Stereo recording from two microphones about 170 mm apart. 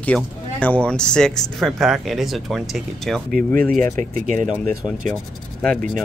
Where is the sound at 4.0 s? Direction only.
45° right (ahead or behind).